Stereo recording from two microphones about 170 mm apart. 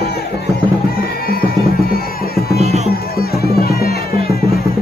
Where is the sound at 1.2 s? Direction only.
65° left (ahead or behind).